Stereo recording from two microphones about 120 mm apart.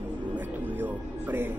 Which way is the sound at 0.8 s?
15° right (ahead or behind).